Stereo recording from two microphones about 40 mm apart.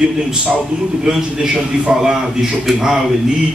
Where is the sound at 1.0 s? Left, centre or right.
Centre.